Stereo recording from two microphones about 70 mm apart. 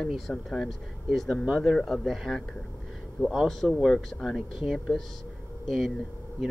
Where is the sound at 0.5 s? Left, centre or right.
Centre.